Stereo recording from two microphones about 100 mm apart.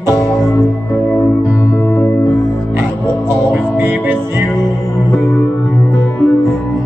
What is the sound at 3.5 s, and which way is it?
Music, 20° right (ahead or behind).